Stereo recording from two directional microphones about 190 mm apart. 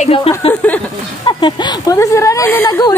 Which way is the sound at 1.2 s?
25° left (ahead or behind).